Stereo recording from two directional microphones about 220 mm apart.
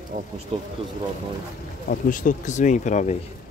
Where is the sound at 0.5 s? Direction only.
25° right (ahead or behind).